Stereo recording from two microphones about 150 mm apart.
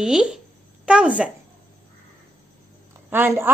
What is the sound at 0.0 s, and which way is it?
Speech, 5° right (ahead or behind).